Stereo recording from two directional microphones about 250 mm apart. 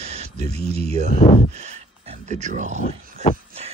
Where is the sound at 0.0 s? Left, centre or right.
Right.